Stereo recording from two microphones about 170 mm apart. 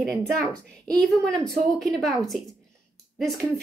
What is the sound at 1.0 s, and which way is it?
A woman's voice, 5° left (ahead or behind).